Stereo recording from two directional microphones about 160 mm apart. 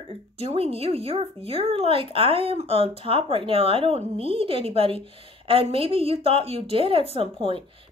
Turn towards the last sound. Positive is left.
turn(degrees=-35)  # may be behind; listen again after turning